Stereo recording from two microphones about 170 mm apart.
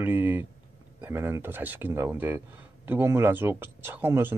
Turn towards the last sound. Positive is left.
turn(degrees=-15)  # may be behind; listen again after turning